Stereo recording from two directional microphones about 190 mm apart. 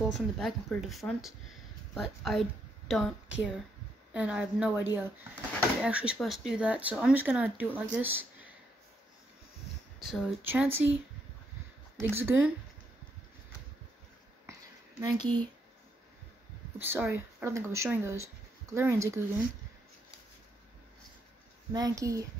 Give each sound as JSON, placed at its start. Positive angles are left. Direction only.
{"t": 0.0, "sound": "speech", "side_deg": 0}
{"t": 10.0, "sound": "speech", "side_deg": 0}
{"t": 12.0, "sound": "speech", "side_deg": -10}
{"t": 14.4, "sound": "a sound", "side_deg": -20}
{"t": 16.8, "sound": "speech", "side_deg": -10}
{"t": 21.7, "sound": "speech", "side_deg": -20}